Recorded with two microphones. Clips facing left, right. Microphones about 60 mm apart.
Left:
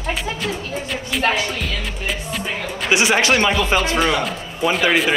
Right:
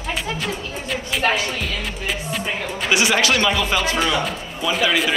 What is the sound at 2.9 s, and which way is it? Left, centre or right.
Speech, left.